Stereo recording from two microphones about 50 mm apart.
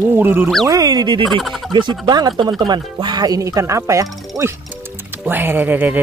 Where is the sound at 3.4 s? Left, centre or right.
Right.